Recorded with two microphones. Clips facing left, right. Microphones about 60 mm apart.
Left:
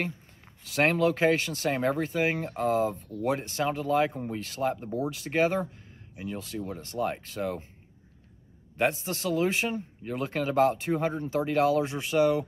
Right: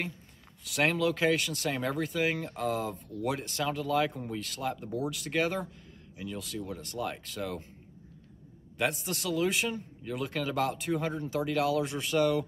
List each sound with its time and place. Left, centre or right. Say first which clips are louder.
0.7 s speech: left 4 dB; left
8.7 s speech: left 4 dB; left